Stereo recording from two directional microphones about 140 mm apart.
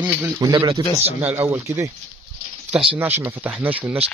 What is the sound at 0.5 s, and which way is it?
Speech, 35° right (ahead or behind).